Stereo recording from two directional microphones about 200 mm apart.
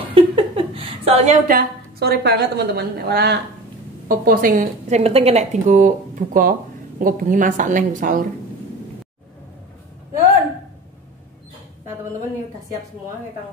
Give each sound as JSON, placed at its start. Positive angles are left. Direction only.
{"t": 0.1, "sound": "a woman's voice", "side_deg": -30}